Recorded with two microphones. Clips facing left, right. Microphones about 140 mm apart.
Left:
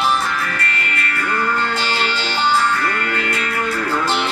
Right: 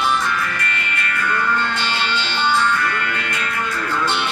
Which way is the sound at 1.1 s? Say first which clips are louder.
Even; 40° left (ahead or behind).